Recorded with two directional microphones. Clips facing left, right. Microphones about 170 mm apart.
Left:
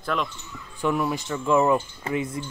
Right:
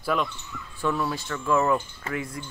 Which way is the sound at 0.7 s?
15° left (ahead or behind).